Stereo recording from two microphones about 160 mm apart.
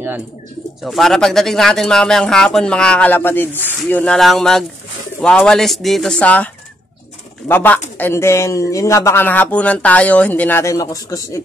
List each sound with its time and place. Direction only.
0.8 s speech: centre (ahead or behind); by 11.3 s 20° left (ahead or behind)